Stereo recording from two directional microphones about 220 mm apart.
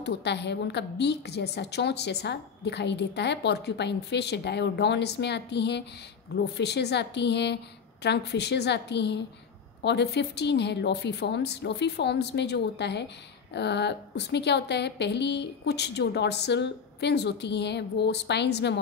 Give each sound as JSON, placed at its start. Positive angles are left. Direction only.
{"t": 0.0, "sound": "a woman's voice", "side_deg": 50}